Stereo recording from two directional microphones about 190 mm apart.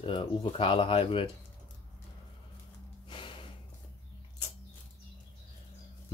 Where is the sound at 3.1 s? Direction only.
25° left (ahead or behind).